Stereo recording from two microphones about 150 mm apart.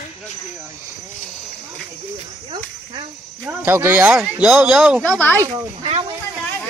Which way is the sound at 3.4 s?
15° right (ahead or behind).